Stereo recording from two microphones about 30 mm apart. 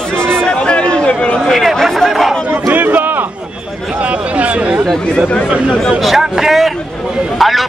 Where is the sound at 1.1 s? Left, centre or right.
Left.